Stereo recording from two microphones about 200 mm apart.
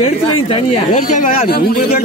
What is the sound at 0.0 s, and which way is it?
Speech, 30° left (ahead or behind).